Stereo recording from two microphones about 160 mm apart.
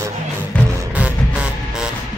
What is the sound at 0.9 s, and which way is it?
Music, 10° right (ahead or behind).